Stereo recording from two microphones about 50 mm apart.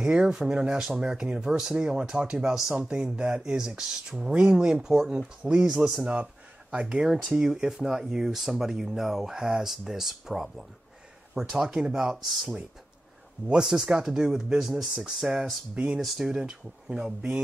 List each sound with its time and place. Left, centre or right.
0.0 s speech: centre
13.5 s speech: centre
15.7 s speech: centre